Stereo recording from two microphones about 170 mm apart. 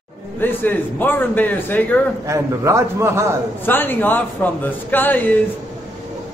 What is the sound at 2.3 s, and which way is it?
A man's voice, 15° right (ahead or behind).